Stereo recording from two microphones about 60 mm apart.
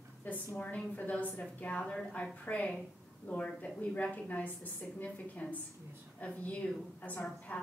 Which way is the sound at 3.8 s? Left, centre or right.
Left.